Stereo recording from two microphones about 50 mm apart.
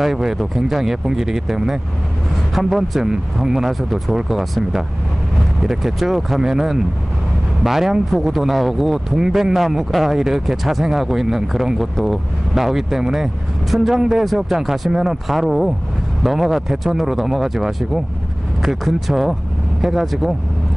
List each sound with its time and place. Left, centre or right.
0.0 s speech: centre